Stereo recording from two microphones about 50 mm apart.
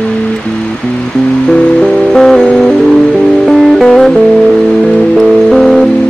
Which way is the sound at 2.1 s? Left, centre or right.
Centre.